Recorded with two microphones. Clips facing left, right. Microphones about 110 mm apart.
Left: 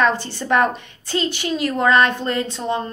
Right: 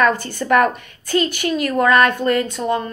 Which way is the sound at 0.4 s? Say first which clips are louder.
Right 3 dB; 25° left (ahead or behind).